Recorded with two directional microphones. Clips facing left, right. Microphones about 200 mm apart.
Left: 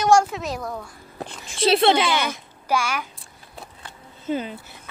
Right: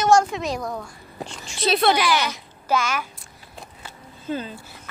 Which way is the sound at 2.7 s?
10° left (ahead or behind).